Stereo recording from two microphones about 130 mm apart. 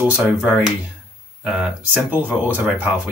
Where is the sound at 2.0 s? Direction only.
15° right (ahead or behind).